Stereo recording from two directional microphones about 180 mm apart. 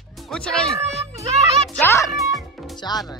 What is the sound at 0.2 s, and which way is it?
Speech, centre (ahead or behind).